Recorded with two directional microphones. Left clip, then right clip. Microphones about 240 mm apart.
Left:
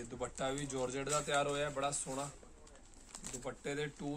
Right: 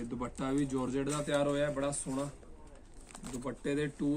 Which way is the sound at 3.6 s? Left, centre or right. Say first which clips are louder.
Right 7 dB; centre.